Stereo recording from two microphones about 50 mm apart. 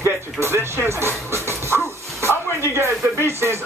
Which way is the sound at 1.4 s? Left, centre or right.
Right.